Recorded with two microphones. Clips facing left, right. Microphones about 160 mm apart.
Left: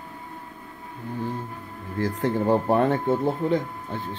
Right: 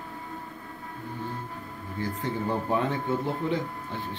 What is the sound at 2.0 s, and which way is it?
Speech, 90° left.